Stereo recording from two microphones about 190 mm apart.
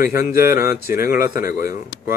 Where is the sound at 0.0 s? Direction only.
50° left (ahead or behind).